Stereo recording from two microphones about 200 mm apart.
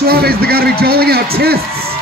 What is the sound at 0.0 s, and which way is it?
A man's voice, 50° right (ahead or behind).